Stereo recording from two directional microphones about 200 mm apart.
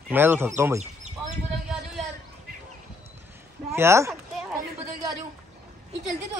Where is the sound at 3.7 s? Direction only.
15° right (ahead or behind).